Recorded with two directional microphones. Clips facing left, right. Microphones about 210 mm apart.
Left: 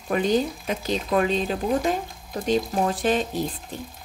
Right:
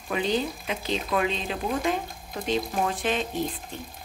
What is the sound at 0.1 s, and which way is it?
Speech, 45° left (ahead or behind).